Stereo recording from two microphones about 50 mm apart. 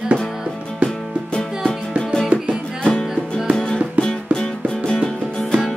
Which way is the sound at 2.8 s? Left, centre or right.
Centre.